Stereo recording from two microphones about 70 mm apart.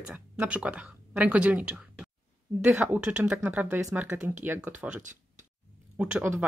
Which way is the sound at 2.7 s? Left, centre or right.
Right.